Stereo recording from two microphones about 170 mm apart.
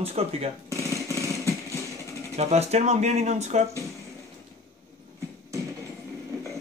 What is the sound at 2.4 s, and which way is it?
Speech, 40° right (ahead or behind).